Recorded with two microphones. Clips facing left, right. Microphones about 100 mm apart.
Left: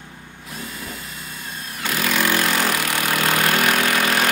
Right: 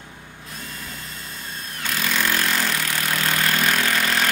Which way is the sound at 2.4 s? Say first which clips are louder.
Left 3 dB; 65° left (ahead or behind).